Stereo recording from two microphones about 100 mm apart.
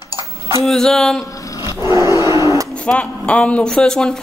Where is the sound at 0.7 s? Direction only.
5° left (ahead or behind).